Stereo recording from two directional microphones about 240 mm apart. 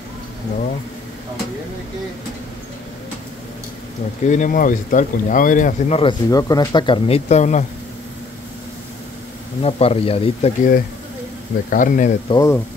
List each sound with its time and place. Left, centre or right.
4.2 s speech: left
9.6 s speech: left
12.3 s speech: centre